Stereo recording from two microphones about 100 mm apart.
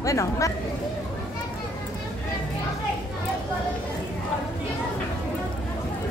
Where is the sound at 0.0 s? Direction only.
30° left (ahead or behind).